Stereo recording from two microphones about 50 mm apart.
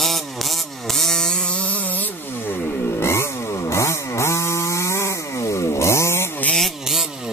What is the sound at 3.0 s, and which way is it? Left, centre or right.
Chainsaw, left.